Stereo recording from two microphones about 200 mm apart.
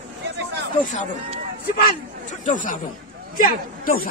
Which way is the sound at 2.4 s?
40° left (ahead or behind).